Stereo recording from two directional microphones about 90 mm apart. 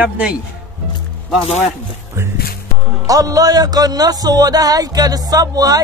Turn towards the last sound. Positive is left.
turn(degrees=-45)  # may be behind; listen again after turning